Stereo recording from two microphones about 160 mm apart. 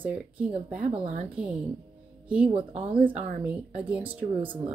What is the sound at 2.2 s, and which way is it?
Speech, 5° right (ahead or behind).